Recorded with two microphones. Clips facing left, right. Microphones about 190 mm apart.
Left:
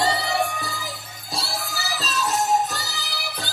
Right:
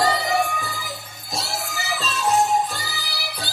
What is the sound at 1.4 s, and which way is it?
Music, 35° left (ahead or behind).